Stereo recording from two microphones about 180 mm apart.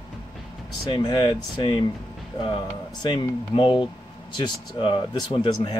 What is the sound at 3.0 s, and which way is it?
Speech, 30° left (ahead or behind).